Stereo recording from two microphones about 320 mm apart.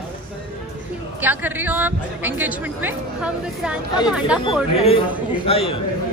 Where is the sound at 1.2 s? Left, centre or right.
Centre.